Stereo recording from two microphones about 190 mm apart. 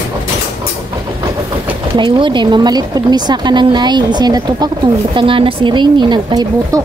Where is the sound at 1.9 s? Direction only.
25° right (ahead or behind).